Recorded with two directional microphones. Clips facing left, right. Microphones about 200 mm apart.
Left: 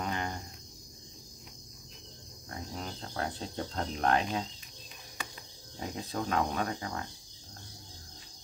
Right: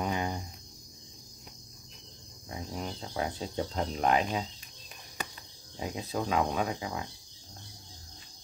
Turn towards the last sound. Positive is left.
turn(degrees=-5)  # may be behind; listen again after turning